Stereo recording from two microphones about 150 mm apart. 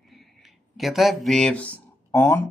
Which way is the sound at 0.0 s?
Centre (ahead or behind).